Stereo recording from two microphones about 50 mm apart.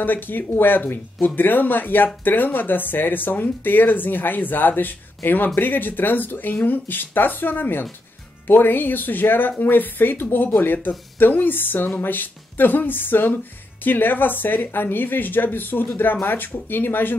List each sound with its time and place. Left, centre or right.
0.0 s speech: left